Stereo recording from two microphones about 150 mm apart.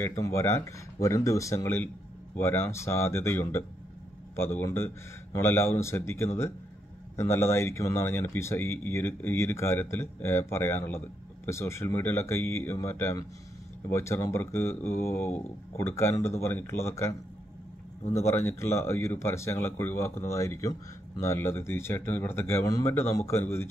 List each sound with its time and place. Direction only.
0.2 s speech: 20° left (ahead or behind)
18.1 s speech: 15° left (ahead or behind)